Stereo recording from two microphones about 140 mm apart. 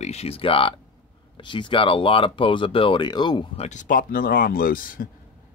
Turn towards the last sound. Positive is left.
turn(degrees=80)